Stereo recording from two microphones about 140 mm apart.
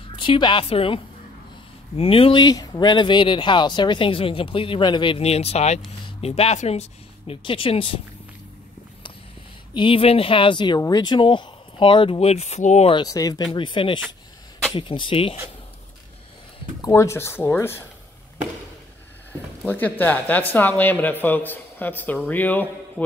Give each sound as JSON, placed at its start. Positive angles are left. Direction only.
{"t": 0.1, "sound": "a woman's voice", "side_deg": 35}
{"t": 9.8, "sound": "speech", "side_deg": 40}
{"t": 12.9, "sound": "speech", "side_deg": 25}
{"t": 16.8, "sound": "speech", "side_deg": 20}
{"t": 19.6, "sound": "speech", "side_deg": 10}